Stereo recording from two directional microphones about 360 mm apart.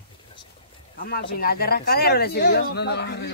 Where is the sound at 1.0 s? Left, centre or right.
Left.